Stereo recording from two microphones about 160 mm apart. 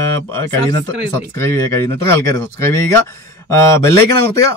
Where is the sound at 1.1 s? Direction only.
15° left (ahead or behind).